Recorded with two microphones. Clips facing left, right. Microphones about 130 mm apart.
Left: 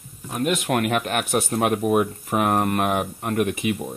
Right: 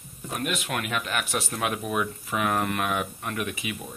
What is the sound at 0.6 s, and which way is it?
Speech, 55° left (ahead or behind).